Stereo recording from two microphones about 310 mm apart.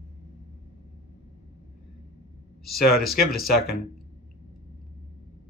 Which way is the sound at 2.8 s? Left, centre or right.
Left.